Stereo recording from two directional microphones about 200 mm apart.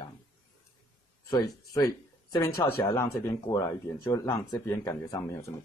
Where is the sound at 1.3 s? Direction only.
15° left (ahead or behind).